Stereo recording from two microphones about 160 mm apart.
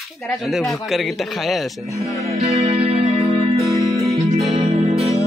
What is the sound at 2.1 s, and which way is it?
Music, 20° left (ahead or behind).